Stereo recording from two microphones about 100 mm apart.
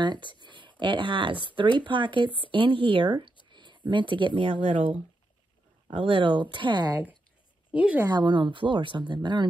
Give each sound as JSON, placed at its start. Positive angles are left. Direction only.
{"t": 0.0, "sound": "speech", "side_deg": -50}
{"t": 3.4, "sound": "a sound", "side_deg": -50}
{"t": 3.9, "sound": "speech", "side_deg": -55}
{"t": 5.9, "sound": "speech", "side_deg": -70}
{"t": 7.7, "sound": "speech", "side_deg": -15}
{"t": 8.1, "sound": "speech", "side_deg": -50}